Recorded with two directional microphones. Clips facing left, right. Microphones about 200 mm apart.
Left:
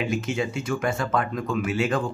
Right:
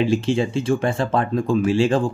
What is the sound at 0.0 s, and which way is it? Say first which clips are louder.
Speech: right 7 dB; 30° right (ahead or behind).